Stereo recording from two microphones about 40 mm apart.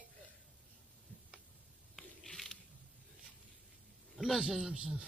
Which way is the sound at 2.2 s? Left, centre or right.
Centre.